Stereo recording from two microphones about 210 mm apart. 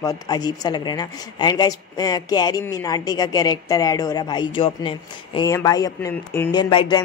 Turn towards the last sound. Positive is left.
turn(degrees=25)  # may be behind; listen again after turning